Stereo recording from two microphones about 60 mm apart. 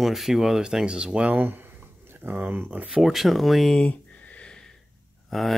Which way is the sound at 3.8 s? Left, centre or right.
Left.